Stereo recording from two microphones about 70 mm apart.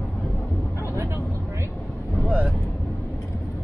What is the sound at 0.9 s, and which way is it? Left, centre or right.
Speech, right.